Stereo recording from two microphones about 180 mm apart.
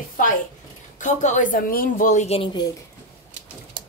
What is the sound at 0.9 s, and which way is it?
Speech, 45° left (ahead or behind).